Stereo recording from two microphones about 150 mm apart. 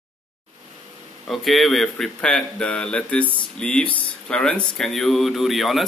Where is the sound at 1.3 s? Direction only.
Centre (ahead or behind).